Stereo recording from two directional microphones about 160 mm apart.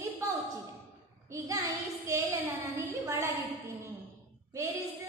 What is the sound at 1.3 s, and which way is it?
Child singing, 20° right (ahead or behind).